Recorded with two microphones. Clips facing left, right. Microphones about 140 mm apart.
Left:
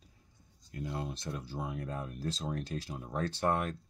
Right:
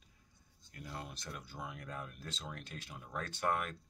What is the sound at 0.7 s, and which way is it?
Speech, 25° left (ahead or behind).